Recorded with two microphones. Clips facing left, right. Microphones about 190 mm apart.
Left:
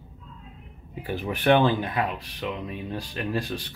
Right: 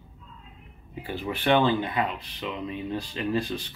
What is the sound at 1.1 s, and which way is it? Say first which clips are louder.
Speech: left 3 dB; 15° left (ahead or behind).